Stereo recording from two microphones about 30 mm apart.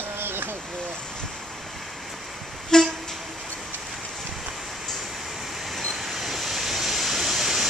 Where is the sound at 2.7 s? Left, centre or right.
Left.